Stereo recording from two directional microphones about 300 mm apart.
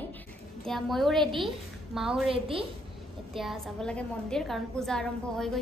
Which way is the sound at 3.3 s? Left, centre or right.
Centre.